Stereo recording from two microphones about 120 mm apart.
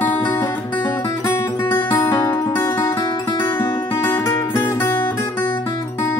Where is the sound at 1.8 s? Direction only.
40° left (ahead or behind).